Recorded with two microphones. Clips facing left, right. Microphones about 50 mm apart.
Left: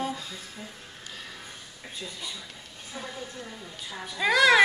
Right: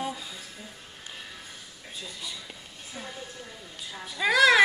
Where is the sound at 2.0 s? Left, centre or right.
Left.